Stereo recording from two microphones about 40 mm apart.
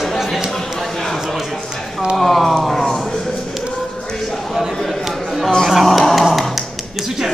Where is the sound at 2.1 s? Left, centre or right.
Centre.